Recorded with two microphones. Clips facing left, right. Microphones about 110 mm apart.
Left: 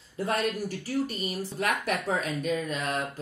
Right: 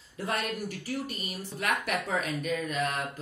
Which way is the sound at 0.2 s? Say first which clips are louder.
Left 4 dB; 35° left (ahead or behind).